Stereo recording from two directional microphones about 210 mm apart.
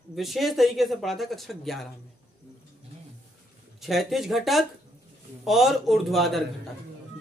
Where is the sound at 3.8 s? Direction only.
Centre (ahead or behind).